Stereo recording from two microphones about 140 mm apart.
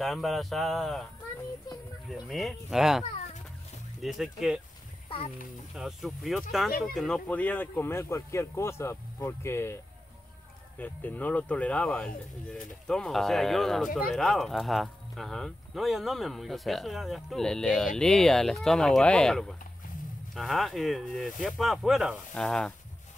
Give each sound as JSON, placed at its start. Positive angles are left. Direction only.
{"t": 0.0, "sound": "speech", "side_deg": 0}
{"t": 2.0, "sound": "speech", "side_deg": 0}
{"t": 4.0, "sound": "speech", "side_deg": 0}
{"t": 5.1, "sound": "speech", "side_deg": 40}
{"t": 5.8, "sound": "speech", "side_deg": 0}
{"t": 10.8, "sound": "speech", "side_deg": 10}